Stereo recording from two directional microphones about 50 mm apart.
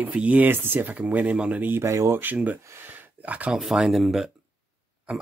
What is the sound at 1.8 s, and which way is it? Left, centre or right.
Speech, right.